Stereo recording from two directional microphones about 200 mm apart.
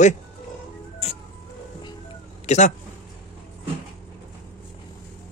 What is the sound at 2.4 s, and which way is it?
Speech, 35° left (ahead or behind).